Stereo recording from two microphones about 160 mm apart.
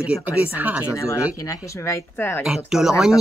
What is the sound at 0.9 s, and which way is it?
Speech, 20° left (ahead or behind).